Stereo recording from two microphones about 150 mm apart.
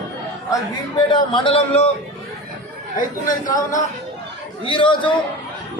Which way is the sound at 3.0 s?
60° left (ahead or behind).